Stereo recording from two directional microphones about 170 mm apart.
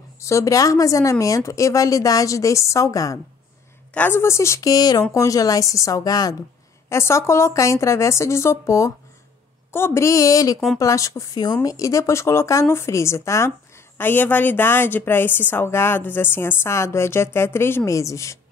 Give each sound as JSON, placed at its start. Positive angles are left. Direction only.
{"t": 0.2, "sound": "a woman's voice", "side_deg": 15}